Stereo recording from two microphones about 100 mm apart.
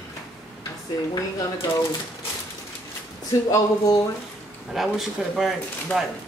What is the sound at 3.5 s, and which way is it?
Speech, 35° left (ahead or behind).